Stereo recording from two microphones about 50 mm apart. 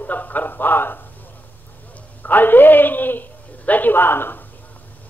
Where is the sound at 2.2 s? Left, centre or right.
Left.